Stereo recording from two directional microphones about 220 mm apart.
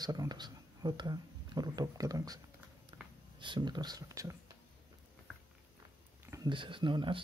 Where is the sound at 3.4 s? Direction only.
20° right (ahead or behind).